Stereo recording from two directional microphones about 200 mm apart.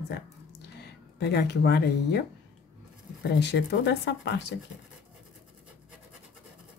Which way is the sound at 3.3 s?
55° left (ahead or behind).